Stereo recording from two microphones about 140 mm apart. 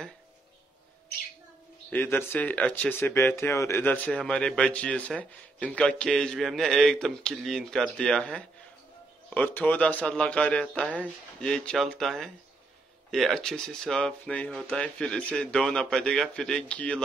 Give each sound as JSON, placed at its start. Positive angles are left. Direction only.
{"t": 1.9, "sound": "speech", "side_deg": 15}